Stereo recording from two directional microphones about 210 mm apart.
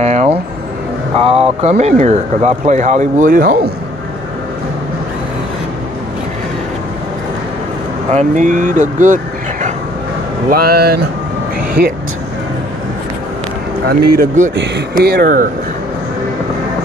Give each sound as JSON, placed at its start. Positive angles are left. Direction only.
{"t": 0.0, "sound": "a sound", "side_deg": -30}
{"t": 1.1, "sound": "speech", "side_deg": -30}
{"t": 8.1, "sound": "speech", "side_deg": -35}
{"t": 13.8, "sound": "speech", "side_deg": -45}